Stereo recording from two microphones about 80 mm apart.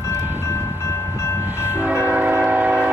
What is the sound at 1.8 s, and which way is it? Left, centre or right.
Train, right.